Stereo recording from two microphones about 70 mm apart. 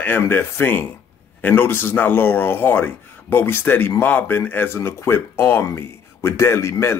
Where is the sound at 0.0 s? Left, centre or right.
Left.